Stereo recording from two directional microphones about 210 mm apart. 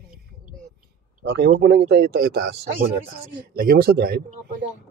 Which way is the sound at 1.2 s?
50° right (ahead or behind).